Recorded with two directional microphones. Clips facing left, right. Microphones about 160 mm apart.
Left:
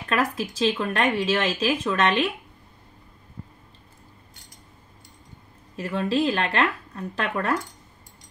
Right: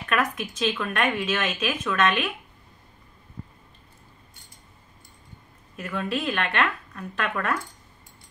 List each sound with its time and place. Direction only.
0.1 s speech: 30° left (ahead or behind)
5.8 s speech: 30° left (ahead or behind)